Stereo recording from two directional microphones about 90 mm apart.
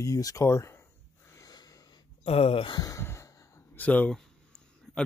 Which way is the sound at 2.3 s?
90° left.